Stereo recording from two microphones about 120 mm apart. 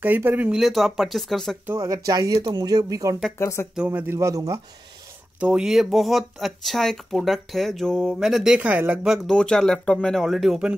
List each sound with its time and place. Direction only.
0.0 s speech: 15° right (ahead or behind); by 1.6 s centre (ahead or behind)
1.7 s speech: 25° right (ahead or behind)
3.3 s speech: 25° left (ahead or behind)
3.7 s speech: 10° right (ahead or behind); by 4.6 s 25° right (ahead or behind)
5.4 s speech: 5° right (ahead or behind)
8.5 s speech: 10° right (ahead or behind)
9.1 s speech: 5° left (ahead or behind)